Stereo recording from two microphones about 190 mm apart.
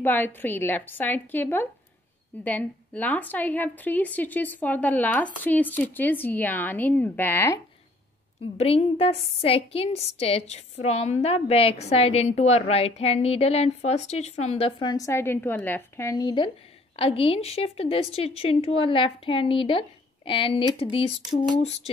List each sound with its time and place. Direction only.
0.0 s a woman's voice: 10° left (ahead or behind)
8.5 s a woman's voice: 30° left (ahead or behind)
14.8 s a woman's voice: 20° left (ahead or behind); by 21.9 s 35° left (ahead or behind)